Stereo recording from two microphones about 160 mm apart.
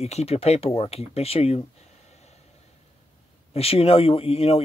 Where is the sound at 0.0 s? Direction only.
40° left (ahead or behind).